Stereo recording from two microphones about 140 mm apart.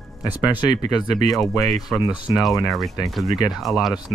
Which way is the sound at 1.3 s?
Centre (ahead or behind).